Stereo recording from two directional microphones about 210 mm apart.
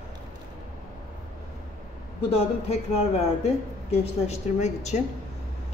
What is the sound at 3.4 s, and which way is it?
A woman's voice, 30° left (ahead or behind).